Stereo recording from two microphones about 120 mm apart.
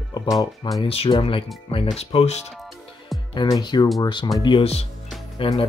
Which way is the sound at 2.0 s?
60° left (ahead or behind).